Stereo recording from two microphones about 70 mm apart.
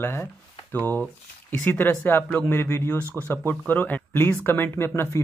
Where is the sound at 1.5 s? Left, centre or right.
Left.